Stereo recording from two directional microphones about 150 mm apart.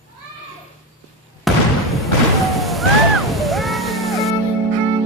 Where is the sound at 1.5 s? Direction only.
Centre (ahead or behind).